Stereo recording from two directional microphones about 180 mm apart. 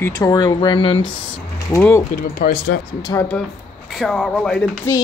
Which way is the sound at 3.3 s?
Centre (ahead or behind).